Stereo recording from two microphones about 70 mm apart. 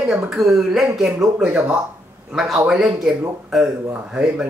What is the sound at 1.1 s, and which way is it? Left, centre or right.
Speech, centre.